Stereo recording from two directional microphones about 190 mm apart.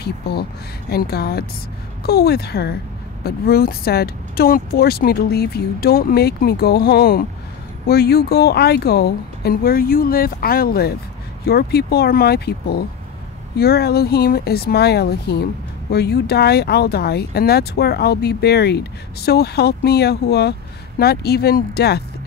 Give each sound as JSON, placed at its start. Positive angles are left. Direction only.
{"t": 0.0, "sound": "speech", "side_deg": 55}